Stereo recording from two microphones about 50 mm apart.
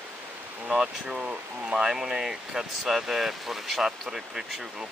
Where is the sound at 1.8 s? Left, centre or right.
Centre.